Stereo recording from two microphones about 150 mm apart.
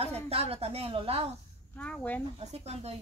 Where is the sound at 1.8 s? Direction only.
10° left (ahead or behind).